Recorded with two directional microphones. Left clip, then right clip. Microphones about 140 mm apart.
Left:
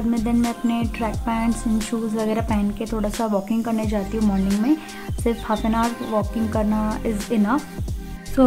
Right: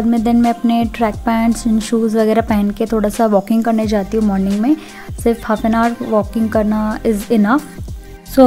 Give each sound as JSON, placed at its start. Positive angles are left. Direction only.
{"t": 0.1, "sound": "speech", "side_deg": -50}
{"t": 5.2, "sound": "speech", "side_deg": -25}
{"t": 5.7, "sound": "speech", "side_deg": -45}